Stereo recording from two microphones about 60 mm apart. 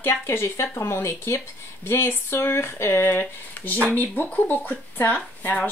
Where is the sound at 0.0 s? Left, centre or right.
Left.